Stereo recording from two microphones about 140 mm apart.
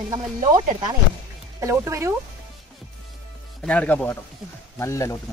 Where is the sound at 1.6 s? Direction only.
20° right (ahead or behind).